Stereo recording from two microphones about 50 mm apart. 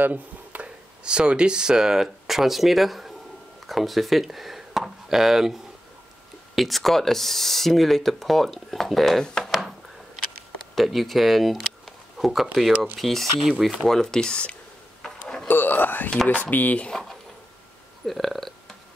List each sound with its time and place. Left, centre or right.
0.0 s speech: right
1.0 s speech: centre
9.2 s speech: centre
9.5 s a sound: centre
10.7 s speech: centre
13.8 s speech: centre
15.0 s a sound: centre
15.4 s speech: left
18.0 s a sound: centre